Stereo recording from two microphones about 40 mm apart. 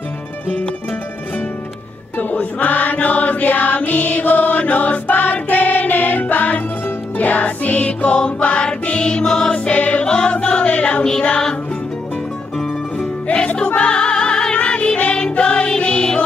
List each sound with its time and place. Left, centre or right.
2.1 s chant: left
7.2 s music: left
10.0 s music: left
10.3 s choir: left
11.1 s music: left
13.7 s music: left